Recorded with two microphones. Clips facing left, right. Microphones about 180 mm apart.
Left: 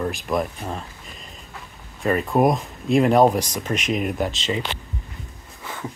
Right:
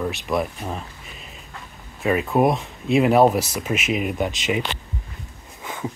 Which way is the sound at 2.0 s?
5° right (ahead or behind).